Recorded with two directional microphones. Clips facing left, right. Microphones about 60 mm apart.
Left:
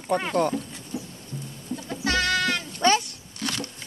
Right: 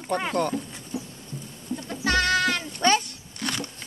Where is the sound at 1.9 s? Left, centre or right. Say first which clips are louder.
Right 2 dB; centre.